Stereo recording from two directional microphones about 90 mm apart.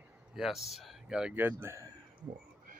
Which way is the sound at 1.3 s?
25° right (ahead or behind).